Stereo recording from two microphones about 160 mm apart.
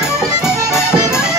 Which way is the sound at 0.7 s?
15° left (ahead or behind).